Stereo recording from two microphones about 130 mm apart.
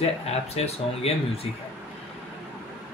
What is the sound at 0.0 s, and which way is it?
Speech, 55° left (ahead or behind).